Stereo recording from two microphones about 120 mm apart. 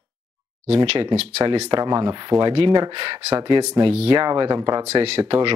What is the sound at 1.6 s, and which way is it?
Speech, 35° right (ahead or behind).